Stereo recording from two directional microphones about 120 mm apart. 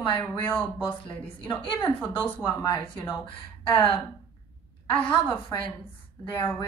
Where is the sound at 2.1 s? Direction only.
15° left (ahead or behind).